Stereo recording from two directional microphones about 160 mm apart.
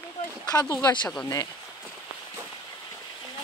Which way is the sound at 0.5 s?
25° left (ahead or behind).